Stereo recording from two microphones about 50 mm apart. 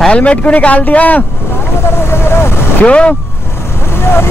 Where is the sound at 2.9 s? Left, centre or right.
Left.